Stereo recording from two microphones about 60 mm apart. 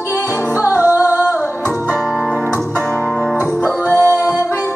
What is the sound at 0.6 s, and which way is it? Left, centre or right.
Music, right.